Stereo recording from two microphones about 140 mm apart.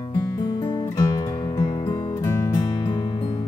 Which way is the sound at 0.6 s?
30° left (ahead or behind).